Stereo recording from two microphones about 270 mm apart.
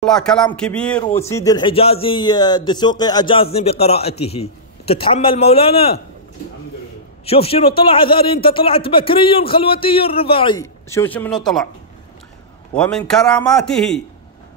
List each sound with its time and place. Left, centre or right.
0.0 s a man's voice: centre; by 5.9 s left
7.2 s a man's voice: left; by 11.6 s centre
12.7 s a man's voice: centre